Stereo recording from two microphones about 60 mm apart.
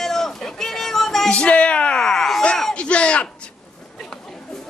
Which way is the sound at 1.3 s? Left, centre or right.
Left.